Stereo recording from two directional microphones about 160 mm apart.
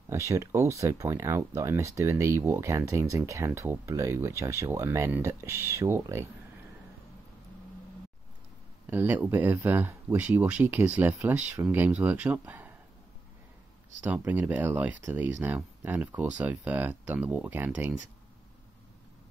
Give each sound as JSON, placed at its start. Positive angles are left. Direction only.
{"t": 0.3, "sound": "speech", "side_deg": -20}
{"t": 8.8, "sound": "speech", "side_deg": -15}
{"t": 14.0, "sound": "speech", "side_deg": -10}